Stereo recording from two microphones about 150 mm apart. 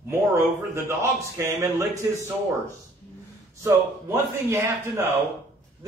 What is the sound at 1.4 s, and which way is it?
Speech, 20° right (ahead or behind).